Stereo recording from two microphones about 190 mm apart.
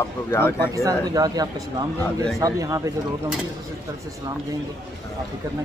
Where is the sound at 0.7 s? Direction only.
15° right (ahead or behind).